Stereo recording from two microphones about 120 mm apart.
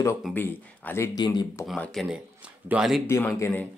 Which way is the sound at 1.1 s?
35° left (ahead or behind).